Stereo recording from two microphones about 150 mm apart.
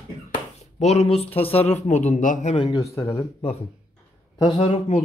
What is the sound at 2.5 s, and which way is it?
Speech, 35° left (ahead or behind).